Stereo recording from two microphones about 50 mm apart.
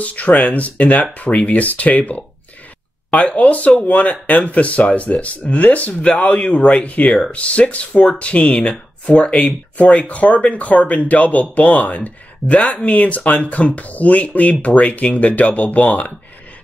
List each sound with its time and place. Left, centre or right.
0.0 s speech: left